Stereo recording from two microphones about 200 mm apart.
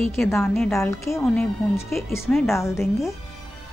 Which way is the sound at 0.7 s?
15° left (ahead or behind).